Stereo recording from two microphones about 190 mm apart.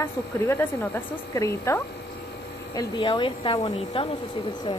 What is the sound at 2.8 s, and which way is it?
Speech, 25° left (ahead or behind).